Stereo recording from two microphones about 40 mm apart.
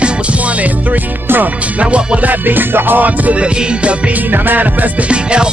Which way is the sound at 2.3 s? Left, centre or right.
Right.